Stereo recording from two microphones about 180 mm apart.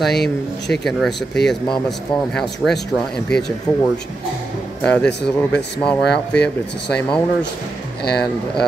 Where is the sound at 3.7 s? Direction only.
25° left (ahead or behind).